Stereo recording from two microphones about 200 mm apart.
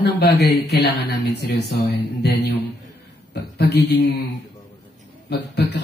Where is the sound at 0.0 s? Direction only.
55° left (ahead or behind).